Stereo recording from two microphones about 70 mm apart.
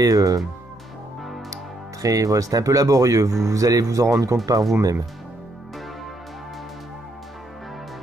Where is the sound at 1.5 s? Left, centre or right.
Right.